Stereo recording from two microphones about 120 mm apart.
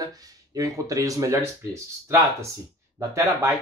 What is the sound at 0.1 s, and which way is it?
Speech, 30° right (ahead or behind).